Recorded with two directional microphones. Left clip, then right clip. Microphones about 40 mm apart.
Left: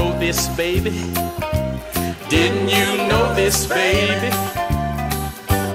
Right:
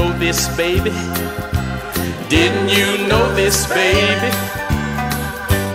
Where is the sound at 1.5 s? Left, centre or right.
Right.